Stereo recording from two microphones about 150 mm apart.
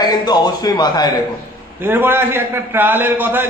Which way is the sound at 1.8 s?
15° right (ahead or behind).